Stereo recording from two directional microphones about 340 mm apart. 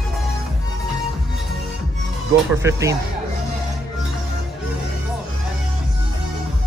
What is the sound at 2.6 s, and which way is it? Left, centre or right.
Speech, centre.